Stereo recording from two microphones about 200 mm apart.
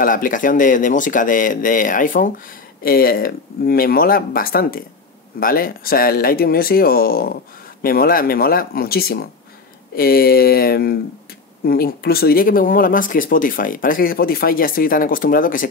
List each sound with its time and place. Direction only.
0.0 s speech: 40° left (ahead or behind)